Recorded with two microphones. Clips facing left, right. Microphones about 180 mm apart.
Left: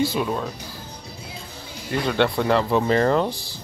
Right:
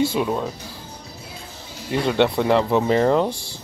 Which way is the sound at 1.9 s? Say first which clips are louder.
Right 2 dB; 15° right (ahead or behind).